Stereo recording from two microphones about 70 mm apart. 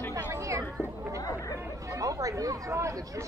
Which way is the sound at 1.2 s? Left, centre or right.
Left.